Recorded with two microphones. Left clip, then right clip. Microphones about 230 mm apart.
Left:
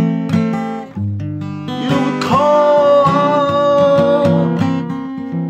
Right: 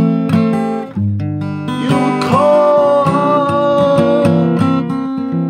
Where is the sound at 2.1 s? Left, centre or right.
Centre.